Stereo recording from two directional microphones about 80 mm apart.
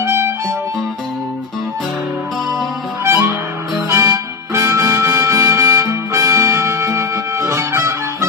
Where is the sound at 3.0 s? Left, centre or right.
Right.